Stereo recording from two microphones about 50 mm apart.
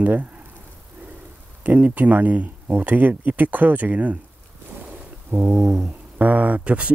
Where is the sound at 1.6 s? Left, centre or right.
Right.